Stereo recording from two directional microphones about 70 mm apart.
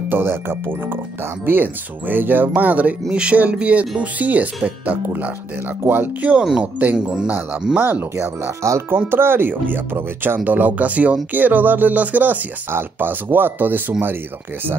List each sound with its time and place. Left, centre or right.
0.1 s speech: right
6.4 s speech: centre
6.8 s speech: right
7.1 s speech: centre
7.7 s speech: right
8.2 s speech: right
8.9 s speech: right